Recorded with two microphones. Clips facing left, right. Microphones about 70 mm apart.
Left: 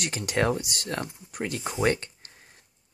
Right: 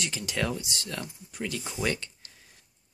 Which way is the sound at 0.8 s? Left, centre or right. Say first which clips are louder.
Left 5 dB; left.